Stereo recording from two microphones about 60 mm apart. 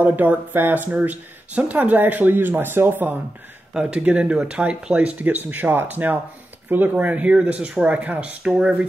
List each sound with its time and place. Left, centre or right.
0.0 s speech: right
3.8 s speech: right
5.2 s speech: right